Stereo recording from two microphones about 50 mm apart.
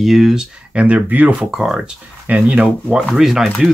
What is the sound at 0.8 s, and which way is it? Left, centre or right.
Speech, right.